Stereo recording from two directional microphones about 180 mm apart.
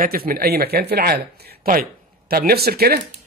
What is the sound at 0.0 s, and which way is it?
Speech, 55° right (ahead or behind).